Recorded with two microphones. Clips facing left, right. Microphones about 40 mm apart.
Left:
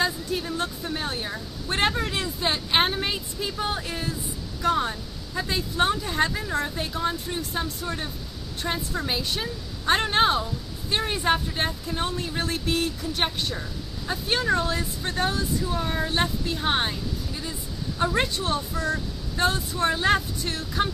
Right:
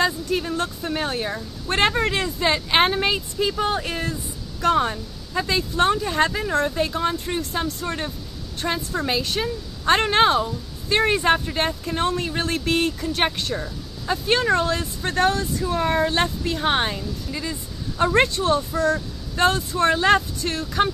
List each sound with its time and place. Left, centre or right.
0.0 s a sound: right
1.7 s speech: right
4.6 s speech: right
6.7 s speech: right
7.0 s speech: right
8.6 s a woman's voice: right
9.0 s speech: right
16.5 s speech: right
17.3 s speech: right
18.1 s speech: right